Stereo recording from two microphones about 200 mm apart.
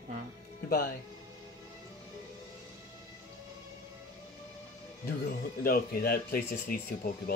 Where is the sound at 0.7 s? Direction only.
50° left (ahead or behind).